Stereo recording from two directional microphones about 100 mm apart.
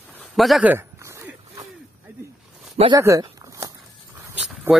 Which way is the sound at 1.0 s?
30° right (ahead or behind).